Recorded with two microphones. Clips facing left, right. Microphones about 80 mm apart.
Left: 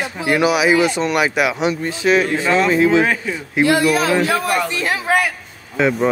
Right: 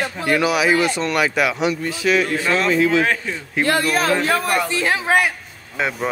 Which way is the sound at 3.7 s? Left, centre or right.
Right.